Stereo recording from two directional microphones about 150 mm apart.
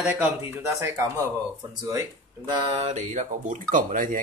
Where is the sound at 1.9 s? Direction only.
25° right (ahead or behind).